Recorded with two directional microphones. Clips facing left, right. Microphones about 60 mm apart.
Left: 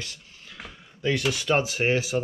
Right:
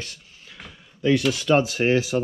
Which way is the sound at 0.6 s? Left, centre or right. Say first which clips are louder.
Even; centre.